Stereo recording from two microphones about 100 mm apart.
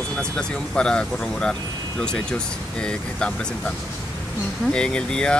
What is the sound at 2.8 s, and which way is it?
Speech, 10° left (ahead or behind).